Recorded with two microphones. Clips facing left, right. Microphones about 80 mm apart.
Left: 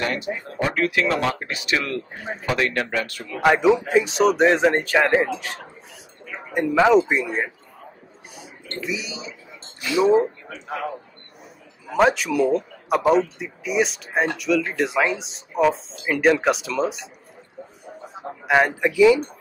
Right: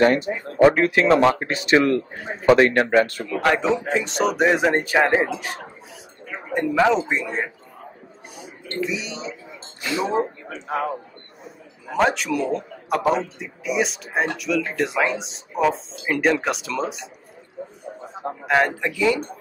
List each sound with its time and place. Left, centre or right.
0.0 s speech: right
3.3 s a man's voice: centre
3.9 s speech: centre
4.7 s speech: centre
6.7 s a man's voice: centre
8.8 s speech: centre
9.8 s speech: right
11.9 s speech: centre
18.4 s a man's voice: centre